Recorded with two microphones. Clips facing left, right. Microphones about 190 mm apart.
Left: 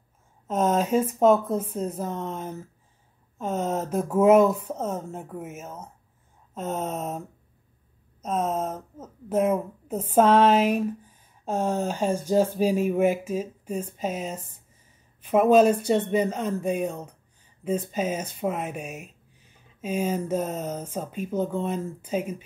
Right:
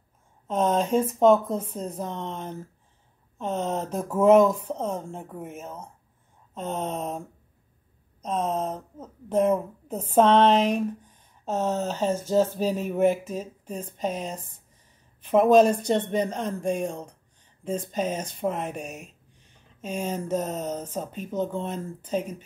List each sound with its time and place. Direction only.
0.5 s speech: 5° left (ahead or behind)